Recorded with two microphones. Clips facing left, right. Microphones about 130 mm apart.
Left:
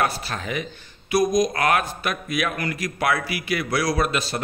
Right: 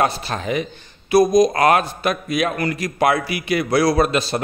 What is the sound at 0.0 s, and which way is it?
A man's voice, 25° right (ahead or behind).